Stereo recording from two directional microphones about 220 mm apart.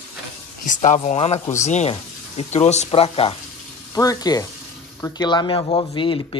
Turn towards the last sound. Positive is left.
turn(degrees=25)  # may be behind; listen again after turning